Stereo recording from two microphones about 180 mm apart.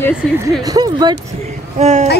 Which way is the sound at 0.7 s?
20° right (ahead or behind).